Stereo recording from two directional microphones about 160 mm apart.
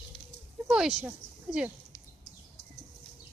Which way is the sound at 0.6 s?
5° right (ahead or behind).